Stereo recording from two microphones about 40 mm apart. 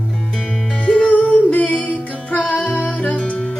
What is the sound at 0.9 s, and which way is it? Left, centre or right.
Music, left.